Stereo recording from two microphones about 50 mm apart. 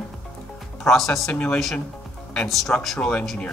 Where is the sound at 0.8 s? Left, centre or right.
Centre.